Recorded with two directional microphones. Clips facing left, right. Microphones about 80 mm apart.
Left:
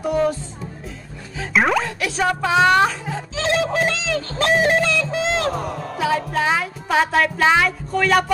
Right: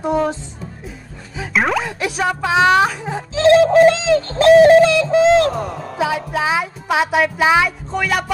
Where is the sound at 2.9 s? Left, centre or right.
Centre.